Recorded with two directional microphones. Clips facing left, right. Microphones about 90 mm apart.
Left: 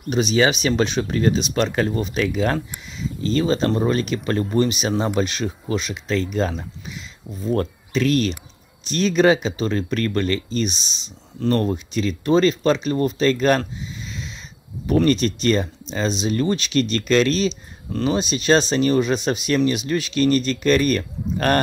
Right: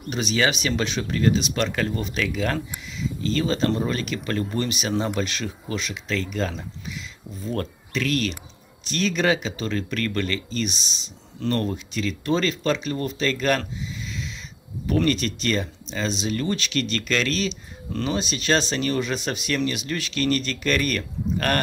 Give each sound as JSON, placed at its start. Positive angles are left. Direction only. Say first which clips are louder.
{"t": 0.1, "sound": "speech", "louder": "left 5 dB", "side_deg": 20}
{"t": 8.0, "sound": "speech", "louder": "left 5 dB", "side_deg": 30}
{"t": 14.9, "sound": "speech", "louder": "left 5 dB", "side_deg": 25}